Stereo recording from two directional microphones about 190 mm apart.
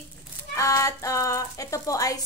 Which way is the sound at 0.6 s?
15° left (ahead or behind).